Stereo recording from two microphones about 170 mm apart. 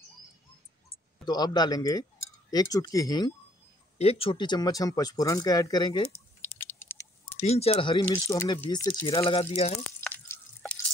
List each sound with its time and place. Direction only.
1.2 s speech: 25° left (ahead or behind)
4.0 s speech: 35° left (ahead or behind)
6.4 s patter: 10° left (ahead or behind)
7.4 s speech: 35° left (ahead or behind)
8.3 s speech: 15° left (ahead or behind)
9.2 s speech: 35° left (ahead or behind)
9.8 s drip: 10° left (ahead or behind)